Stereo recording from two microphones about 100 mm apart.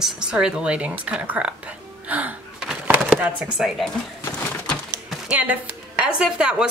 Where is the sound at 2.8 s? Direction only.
20° right (ahead or behind).